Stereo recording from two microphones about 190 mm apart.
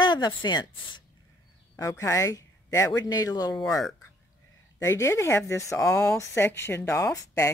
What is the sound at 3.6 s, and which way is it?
Speech, centre (ahead or behind).